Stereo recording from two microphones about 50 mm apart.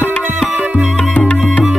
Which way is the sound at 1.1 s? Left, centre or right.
Left.